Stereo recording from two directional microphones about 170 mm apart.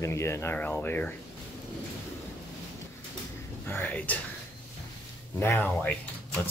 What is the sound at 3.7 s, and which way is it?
Speech, 10° left (ahead or behind).